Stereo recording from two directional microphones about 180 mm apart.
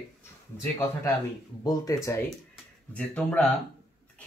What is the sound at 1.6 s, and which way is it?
Speech, 20° left (ahead or behind).